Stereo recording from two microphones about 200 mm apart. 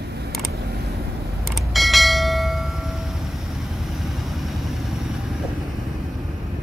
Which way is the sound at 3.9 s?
Centre (ahead or behind).